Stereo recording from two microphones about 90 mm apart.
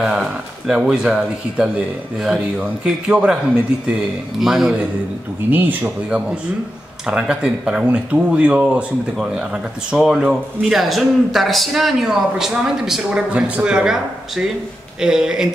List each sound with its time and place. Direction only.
0.0 s a man's voice: 5° right (ahead or behind)
4.4 s a man's voice: 5° right (ahead or behind)
5.5 s speech: 20° right (ahead or behind)
7.1 s speech: 10° right (ahead or behind)